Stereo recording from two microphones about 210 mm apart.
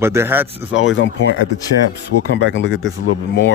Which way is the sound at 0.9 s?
65° left (ahead or behind).